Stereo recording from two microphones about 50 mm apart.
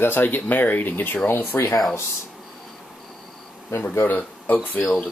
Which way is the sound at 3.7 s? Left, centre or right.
Left.